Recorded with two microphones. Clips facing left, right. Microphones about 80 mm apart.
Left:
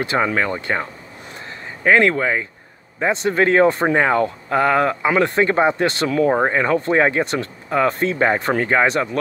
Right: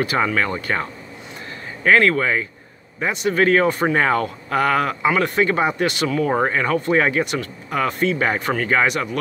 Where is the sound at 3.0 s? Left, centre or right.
Left.